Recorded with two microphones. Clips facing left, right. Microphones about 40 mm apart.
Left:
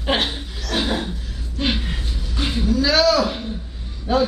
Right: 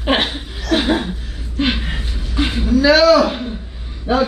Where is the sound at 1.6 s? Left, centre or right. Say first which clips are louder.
Right 4 dB; right.